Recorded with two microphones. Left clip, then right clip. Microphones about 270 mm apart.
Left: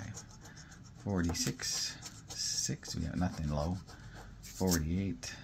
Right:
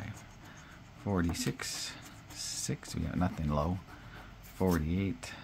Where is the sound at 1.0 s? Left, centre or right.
Centre.